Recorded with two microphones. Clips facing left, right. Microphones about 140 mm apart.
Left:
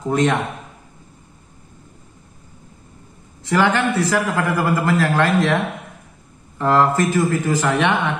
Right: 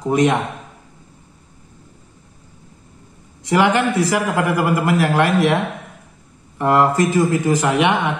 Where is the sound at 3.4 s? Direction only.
15° right (ahead or behind).